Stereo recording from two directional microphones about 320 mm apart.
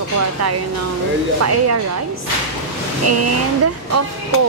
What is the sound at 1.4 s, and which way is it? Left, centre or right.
Speech, right.